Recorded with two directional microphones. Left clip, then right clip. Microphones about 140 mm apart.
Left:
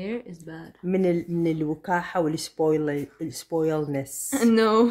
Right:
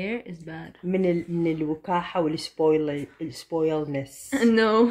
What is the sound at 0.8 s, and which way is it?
Speech, 30° left (ahead or behind).